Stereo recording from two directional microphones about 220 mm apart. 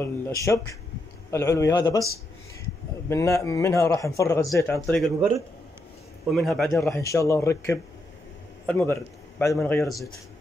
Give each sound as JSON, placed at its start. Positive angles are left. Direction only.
{"t": 0.0, "sound": "a man's voice", "side_deg": 10}
{"t": 3.1, "sound": "a man's voice", "side_deg": 15}
{"t": 6.3, "sound": "a man's voice", "side_deg": 0}
{"t": 6.8, "sound": "a man's voice", "side_deg": 15}